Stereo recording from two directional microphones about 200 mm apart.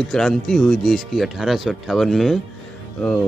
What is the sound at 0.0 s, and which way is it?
Speech, centre (ahead or behind).